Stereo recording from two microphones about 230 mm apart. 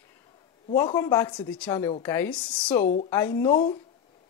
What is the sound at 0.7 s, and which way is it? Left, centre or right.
Speech, centre.